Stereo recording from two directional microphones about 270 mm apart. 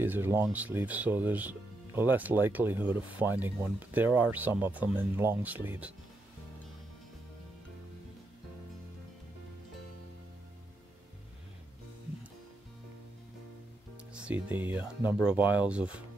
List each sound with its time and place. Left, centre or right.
0.0 s speech: centre
14.1 s speech: centre